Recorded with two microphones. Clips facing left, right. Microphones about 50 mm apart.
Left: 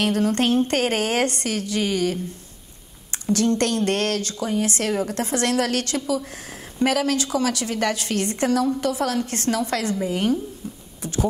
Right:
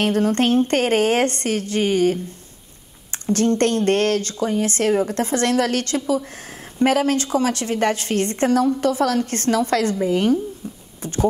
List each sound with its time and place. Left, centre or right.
0.0 s speech: right
3.3 s speech: right